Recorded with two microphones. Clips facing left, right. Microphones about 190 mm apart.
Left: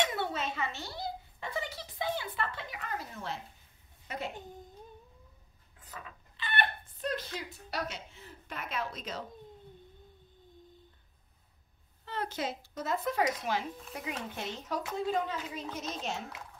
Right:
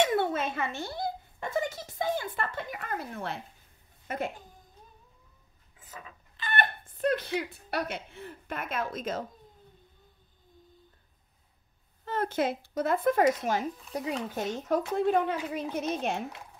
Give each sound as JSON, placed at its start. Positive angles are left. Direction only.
{"t": 0.0, "sound": "a sound", "side_deg": -50}
{"t": 4.1, "sound": "speech", "side_deg": -50}
{"t": 6.3, "sound": "speech", "side_deg": -45}
{"t": 12.0, "sound": "speech", "side_deg": -50}